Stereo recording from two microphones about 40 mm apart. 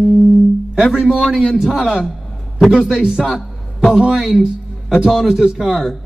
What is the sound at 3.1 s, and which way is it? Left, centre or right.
Speech, centre.